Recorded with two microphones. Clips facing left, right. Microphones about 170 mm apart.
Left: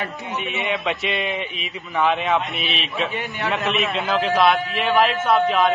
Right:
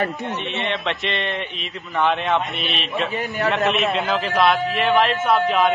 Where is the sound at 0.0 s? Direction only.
45° right (ahead or behind).